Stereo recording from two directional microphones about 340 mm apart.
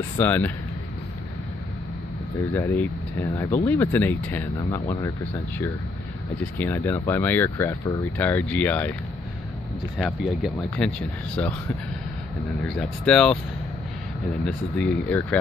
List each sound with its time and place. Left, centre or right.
0.2 s speech: centre
2.5 s speech: centre
6.6 s speech: centre
9.9 s speech: centre
12.6 s speech: centre
14.4 s speech: centre